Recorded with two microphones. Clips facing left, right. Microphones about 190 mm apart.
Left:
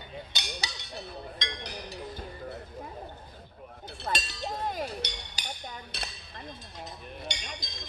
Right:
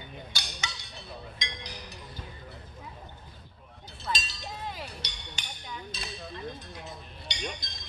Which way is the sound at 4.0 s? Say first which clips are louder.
Left 3 dB; 60° left (ahead or behind).